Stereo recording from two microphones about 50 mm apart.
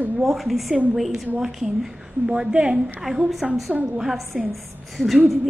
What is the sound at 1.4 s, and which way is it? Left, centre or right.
A woman's voice, centre.